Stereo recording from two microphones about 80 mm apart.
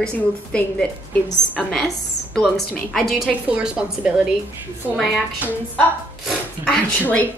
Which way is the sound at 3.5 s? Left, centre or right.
Centre.